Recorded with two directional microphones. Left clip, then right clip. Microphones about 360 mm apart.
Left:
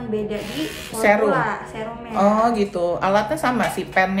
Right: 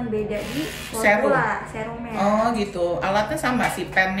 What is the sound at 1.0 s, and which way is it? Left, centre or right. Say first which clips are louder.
Speech: left 1 dB; centre.